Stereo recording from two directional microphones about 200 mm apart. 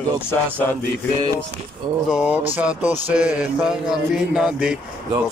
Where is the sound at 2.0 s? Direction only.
5° right (ahead or behind).